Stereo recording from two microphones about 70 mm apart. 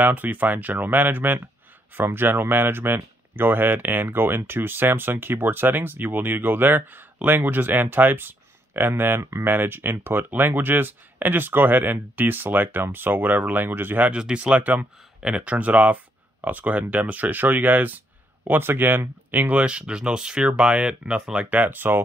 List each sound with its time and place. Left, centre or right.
0.0 s speech: right
9.2 s speech: right
9.5 s speech: right